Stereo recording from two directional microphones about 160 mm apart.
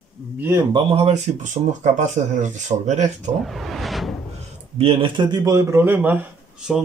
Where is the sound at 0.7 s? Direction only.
35° right (ahead or behind).